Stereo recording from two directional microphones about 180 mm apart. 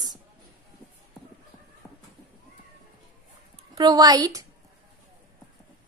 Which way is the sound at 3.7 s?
20° right (ahead or behind).